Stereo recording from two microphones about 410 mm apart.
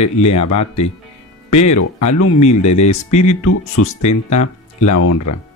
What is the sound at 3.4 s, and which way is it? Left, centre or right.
Speech, left.